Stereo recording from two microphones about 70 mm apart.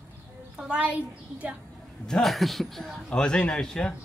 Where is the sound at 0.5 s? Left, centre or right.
Centre.